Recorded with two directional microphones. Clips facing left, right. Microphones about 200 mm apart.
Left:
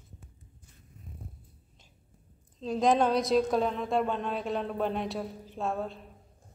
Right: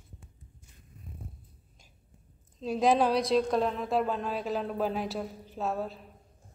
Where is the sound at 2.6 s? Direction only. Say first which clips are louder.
Even; 5° right (ahead or behind).